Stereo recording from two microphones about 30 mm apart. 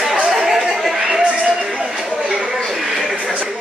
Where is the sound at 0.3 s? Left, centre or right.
Centre.